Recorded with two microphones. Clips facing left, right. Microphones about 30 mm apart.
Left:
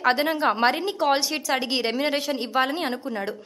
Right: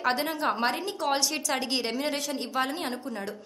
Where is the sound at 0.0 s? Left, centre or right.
Left.